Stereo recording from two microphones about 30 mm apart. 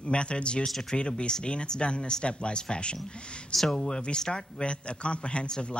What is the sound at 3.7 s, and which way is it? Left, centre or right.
Speech, centre.